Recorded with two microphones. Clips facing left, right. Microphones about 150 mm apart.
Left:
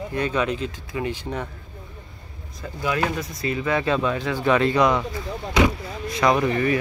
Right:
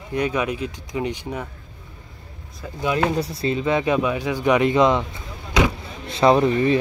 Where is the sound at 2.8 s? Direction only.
25° right (ahead or behind).